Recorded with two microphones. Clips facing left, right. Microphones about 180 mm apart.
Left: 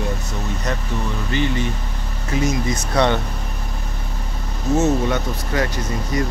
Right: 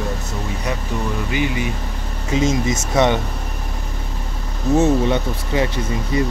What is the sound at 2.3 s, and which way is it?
Speech, 25° right (ahead or behind).